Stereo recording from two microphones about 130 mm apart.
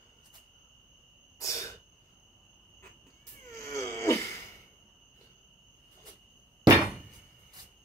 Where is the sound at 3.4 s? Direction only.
20° left (ahead or behind).